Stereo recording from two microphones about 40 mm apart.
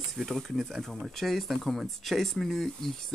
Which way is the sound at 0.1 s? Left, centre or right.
Centre.